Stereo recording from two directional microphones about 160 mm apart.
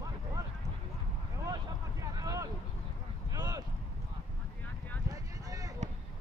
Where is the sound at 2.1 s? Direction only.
20° right (ahead or behind).